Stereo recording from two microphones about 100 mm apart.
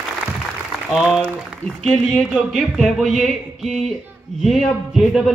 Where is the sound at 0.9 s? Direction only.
5° right (ahead or behind).